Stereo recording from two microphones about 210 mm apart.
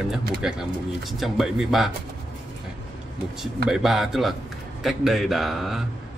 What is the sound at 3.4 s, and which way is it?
A man's voice, centre (ahead or behind).